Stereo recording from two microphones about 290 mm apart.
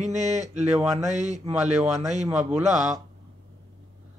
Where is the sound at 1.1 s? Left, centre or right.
Right.